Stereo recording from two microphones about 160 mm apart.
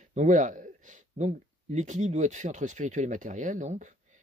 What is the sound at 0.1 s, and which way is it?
Speech, 50° right (ahead or behind).